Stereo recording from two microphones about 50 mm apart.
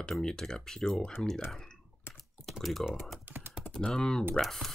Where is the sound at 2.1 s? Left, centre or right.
Left.